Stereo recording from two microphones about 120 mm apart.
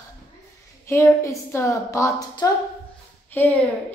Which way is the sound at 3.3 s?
15° left (ahead or behind).